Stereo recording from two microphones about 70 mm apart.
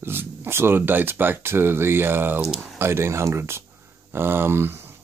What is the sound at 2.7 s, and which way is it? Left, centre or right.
Speech, right.